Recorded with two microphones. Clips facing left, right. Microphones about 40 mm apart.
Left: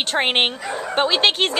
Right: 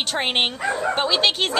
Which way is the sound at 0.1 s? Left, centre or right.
Centre.